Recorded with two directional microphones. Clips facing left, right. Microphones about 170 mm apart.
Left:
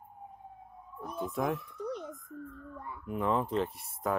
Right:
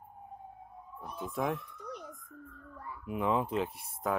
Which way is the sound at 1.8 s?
25° left (ahead or behind).